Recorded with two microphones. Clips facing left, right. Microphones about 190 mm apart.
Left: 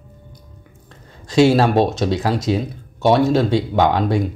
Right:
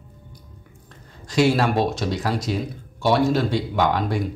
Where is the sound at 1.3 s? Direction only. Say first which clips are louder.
Left 5 dB; 25° left (ahead or behind).